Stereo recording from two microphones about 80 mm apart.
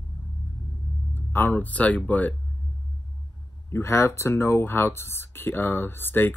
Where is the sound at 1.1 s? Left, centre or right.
Left.